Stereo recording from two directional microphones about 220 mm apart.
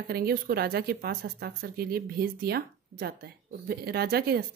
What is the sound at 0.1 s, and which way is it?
Speech, 45° right (ahead or behind).